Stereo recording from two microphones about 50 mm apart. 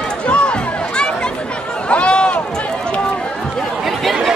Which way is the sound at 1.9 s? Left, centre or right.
Left.